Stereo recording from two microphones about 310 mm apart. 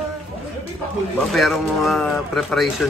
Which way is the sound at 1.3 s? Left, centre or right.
Centre.